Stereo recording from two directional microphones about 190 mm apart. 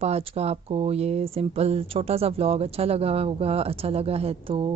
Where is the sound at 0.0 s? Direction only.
30° right (ahead or behind).